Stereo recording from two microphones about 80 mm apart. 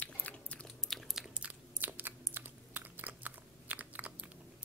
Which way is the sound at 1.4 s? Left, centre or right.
Centre.